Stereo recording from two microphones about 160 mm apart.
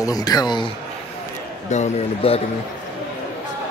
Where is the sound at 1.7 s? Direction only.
40° left (ahead or behind).